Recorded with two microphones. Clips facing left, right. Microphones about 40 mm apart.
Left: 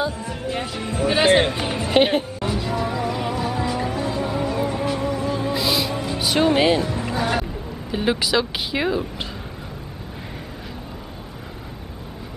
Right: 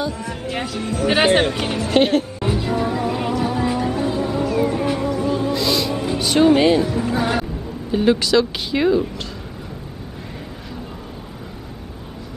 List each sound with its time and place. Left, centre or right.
0.7 s speech: centre
1.0 s speech: right
1.8 s music: centre
2.4 s music: centre
4.2 s music: centre
6.1 s speech: centre
7.2 s speech: centre
7.9 s speech: centre